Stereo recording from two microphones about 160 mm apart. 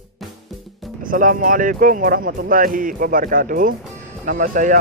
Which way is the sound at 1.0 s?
60° right (ahead or behind).